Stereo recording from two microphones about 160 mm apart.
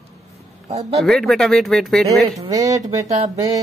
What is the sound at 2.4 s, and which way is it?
Speech, 20° right (ahead or behind).